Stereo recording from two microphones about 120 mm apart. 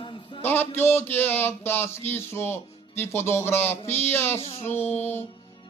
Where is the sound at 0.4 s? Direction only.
20° left (ahead or behind).